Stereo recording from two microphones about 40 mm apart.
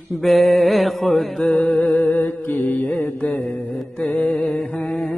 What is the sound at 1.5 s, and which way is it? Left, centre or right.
Humming, left.